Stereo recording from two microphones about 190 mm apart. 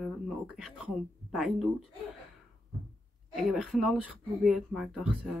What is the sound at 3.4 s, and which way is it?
Speech, 5° right (ahead or behind).